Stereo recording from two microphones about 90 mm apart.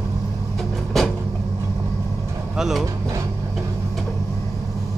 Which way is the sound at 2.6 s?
5° right (ahead or behind).